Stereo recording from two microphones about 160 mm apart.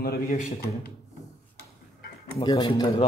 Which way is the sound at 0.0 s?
75° left (ahead or behind).